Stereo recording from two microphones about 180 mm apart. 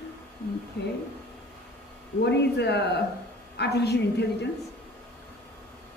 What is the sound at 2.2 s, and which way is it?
A woman's voice, 70° left (ahead or behind).